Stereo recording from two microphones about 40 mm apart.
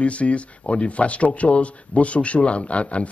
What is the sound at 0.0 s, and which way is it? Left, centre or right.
Speech, left.